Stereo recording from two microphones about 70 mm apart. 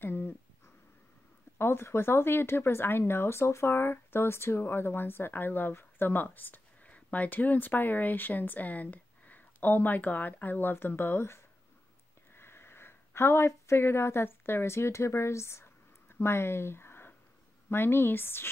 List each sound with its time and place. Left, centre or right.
0.0 s dog: left
1.6 s speech: left